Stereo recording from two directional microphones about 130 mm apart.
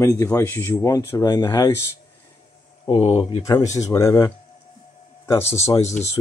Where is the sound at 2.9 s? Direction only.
50° left (ahead or behind).